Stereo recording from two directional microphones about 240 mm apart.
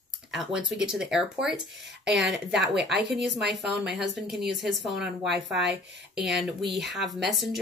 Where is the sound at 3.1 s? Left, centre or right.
Right.